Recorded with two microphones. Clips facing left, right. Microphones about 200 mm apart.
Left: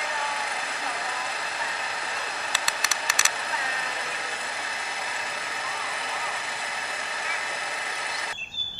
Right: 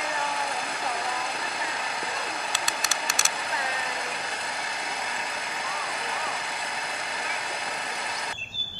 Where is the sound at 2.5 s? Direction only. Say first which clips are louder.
Right 1 dB; centre (ahead or behind).